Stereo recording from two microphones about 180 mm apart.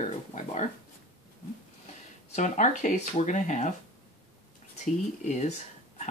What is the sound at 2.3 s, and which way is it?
Speech, 40° left (ahead or behind).